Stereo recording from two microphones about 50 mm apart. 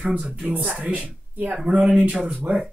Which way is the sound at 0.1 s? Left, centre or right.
Right.